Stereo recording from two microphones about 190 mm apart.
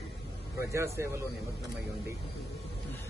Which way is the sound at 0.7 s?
15° right (ahead or behind).